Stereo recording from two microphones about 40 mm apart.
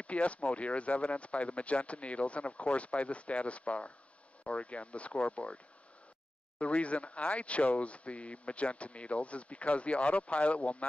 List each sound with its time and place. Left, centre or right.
0.0 s speech: left
6.6 s speech: left